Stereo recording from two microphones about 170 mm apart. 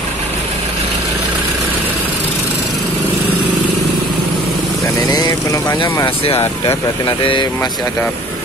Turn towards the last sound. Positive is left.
turn(degrees=30)  # may be behind; listen again after turning